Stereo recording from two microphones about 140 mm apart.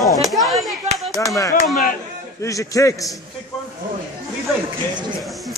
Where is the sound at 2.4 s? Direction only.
20° left (ahead or behind).